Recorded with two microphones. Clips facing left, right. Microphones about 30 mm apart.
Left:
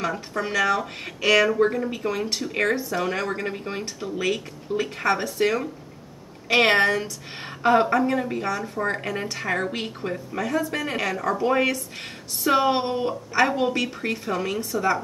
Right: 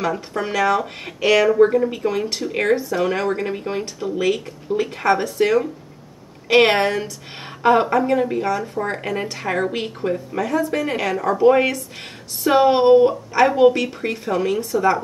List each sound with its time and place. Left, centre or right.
0.0 s speech: centre